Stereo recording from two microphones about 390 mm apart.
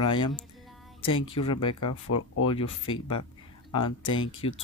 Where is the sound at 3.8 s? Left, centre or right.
Left.